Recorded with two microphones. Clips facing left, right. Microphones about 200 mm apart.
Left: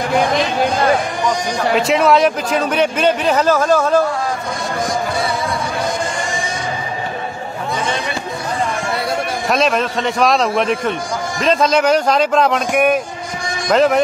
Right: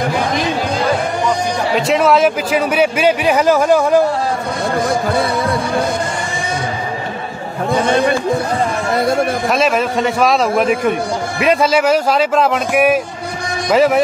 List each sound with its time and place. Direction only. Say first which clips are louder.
1.8 s a man's voice: right 1 dB; centre (ahead or behind)
4.8 s music: right 2 dB; 60° right (ahead or behind)
7.7 s a man's voice: right 9 dB; 60° right (ahead or behind)
8.9 s speech: right 9 dB; 45° right (ahead or behind)
9.5 s speech: right 1 dB; 5° right (ahead or behind)